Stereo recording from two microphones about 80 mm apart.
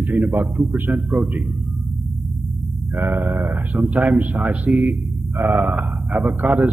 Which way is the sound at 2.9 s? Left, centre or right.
Right.